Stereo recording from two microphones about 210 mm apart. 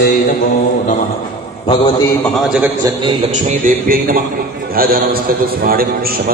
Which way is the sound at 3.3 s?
35° right (ahead or behind).